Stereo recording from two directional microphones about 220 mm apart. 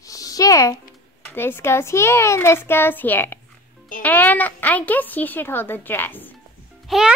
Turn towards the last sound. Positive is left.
turn(degrees=0)  # may be behind; listen again after turning